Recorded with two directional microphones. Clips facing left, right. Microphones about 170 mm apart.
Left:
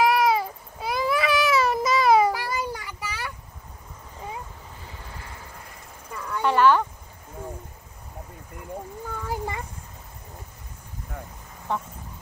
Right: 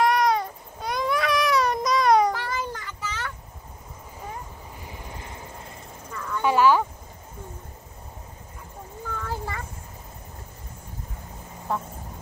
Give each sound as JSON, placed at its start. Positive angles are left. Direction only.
{"t": 0.0, "sound": "baby cry", "side_deg": 5}
{"t": 4.8, "sound": "vehicle", "side_deg": -15}
{"t": 6.1, "sound": "a sound", "side_deg": 10}
{"t": 6.4, "sound": "speech", "side_deg": -10}
{"t": 9.2, "sound": "a sound", "side_deg": 15}
{"t": 11.7, "sound": "vehicle", "side_deg": -5}